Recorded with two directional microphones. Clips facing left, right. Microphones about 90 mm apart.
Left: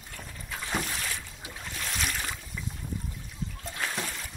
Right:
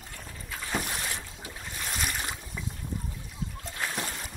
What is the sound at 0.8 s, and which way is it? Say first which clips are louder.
Boat: even; 15° right (ahead or behind).